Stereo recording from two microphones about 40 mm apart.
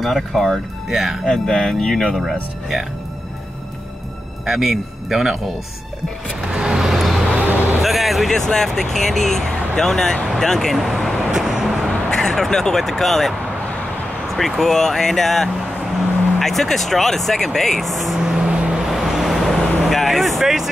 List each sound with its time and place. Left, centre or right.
0.0 s speech: centre
0.8 s speech: centre
1.2 s speech: centre
4.5 s speech: centre
6.5 s vehicle: centre
6.8 s vehicle: centre
7.8 s music: centre
8.4 s speech: centre
11.3 s vehicle: centre
12.1 s speech: centre
14.6 s speech: centre
18.2 s vehicle: centre